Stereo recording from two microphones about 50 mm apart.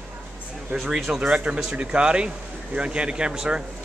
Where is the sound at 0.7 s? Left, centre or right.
Right.